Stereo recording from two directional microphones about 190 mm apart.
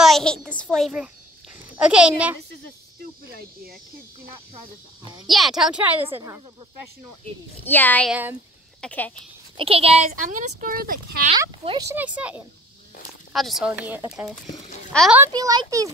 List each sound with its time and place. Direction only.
0.0 s a sound: centre (ahead or behind)
0.6 s speech: centre (ahead or behind)
5.2 s speech: centre (ahead or behind)
7.6 s speech: 10° left (ahead or behind)
8.1 s speech: 10° right (ahead or behind)
8.8 s speech: 10° left (ahead or behind)
9.6 s speech: 30° right (ahead or behind); by 11.2 s 50° right (ahead or behind)
11.3 s a child's voice: 25° right (ahead or behind)
11.9 s speech: 10° right (ahead or behind)
14.4 s a child's voice: 40° left (ahead or behind)
14.9 s a child's voice: centre (ahead or behind)
15.1 s a child's voice: 15° right (ahead or behind)